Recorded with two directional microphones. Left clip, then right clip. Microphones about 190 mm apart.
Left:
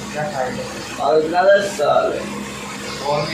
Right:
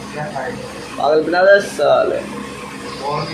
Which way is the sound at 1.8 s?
55° right (ahead or behind).